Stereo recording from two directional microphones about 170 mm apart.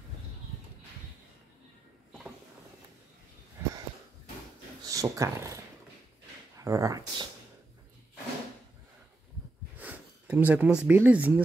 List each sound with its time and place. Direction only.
4.8 s speech: 20° right (ahead or behind)
6.6 s speech: 20° right (ahead or behind)
9.8 s speech: 10° right (ahead or behind)